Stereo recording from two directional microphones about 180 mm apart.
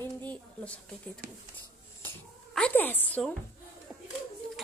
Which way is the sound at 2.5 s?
10° left (ahead or behind).